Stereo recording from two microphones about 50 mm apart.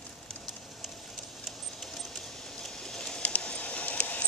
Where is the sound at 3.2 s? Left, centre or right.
Left.